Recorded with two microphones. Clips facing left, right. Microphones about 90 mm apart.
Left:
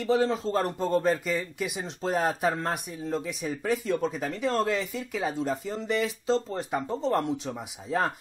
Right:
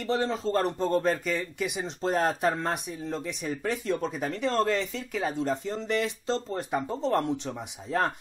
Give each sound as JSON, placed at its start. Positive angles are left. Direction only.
{"t": 0.0, "sound": "a man's voice", "side_deg": 0}